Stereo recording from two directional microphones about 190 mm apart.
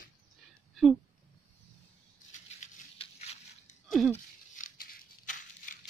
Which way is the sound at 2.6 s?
35° left (ahead or behind).